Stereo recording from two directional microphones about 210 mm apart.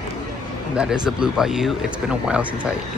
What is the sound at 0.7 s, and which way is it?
Speech, 5° right (ahead or behind).